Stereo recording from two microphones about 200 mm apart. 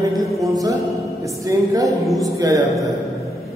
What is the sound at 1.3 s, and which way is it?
Speech, 15° right (ahead or behind).